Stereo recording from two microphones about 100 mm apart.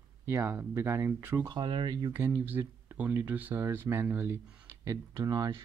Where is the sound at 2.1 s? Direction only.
20° right (ahead or behind).